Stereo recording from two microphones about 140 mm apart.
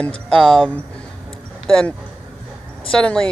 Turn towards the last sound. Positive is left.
turn(degrees=5)  # may be behind; listen again after turning